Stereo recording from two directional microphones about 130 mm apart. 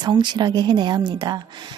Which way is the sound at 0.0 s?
35° right (ahead or behind).